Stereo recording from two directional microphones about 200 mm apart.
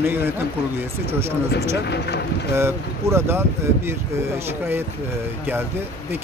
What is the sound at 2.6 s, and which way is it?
Speech, 15° right (ahead or behind).